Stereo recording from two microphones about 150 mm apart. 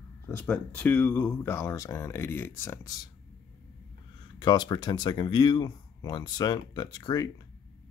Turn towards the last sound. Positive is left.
turn(degrees=25)  # may be behind; listen again after turning